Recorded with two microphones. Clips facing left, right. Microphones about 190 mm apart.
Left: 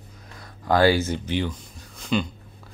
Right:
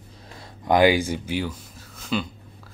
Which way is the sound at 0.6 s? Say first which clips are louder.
Right 1 dB; 15° right (ahead or behind).